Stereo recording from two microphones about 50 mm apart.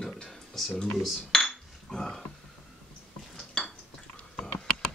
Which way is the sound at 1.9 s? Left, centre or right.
Centre.